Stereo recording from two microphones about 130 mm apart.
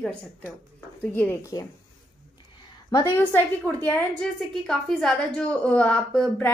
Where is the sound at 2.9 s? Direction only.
30° left (ahead or behind).